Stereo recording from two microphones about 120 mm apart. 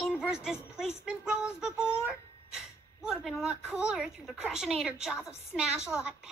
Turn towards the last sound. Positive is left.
turn(degrees=-5)  # may be behind; listen again after turning